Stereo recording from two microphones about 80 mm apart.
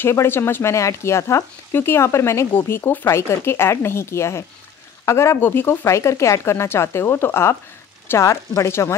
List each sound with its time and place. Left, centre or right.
0.0 s speech: left
8.1 s speech: left